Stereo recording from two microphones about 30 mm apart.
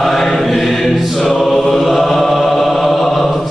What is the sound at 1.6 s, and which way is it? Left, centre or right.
Chant, centre.